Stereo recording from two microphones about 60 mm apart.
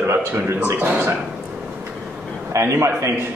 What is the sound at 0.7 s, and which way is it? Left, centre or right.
Speech, right.